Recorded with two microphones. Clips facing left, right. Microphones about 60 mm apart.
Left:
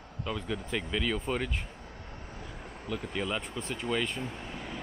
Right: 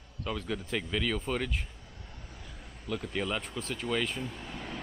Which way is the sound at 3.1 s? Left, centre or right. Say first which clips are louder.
Even; centre.